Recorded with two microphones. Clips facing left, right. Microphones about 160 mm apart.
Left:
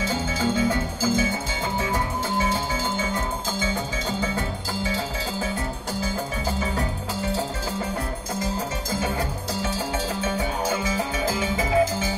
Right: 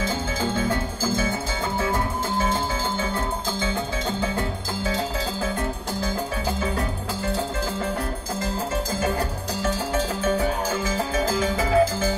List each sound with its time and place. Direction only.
0.4 s music: 50° right (ahead or behind)
11.0 s music: 40° right (ahead or behind)